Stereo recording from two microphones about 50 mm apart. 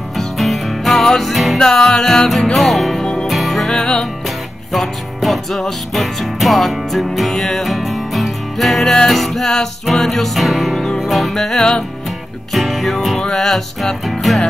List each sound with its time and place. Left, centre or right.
0.2 s music: centre
1.6 s music: centre
3.0 s music: centre
3.3 s music: centre
12.5 s music: centre